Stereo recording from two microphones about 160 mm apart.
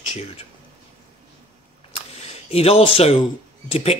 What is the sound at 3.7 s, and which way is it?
Speech, 40° left (ahead or behind).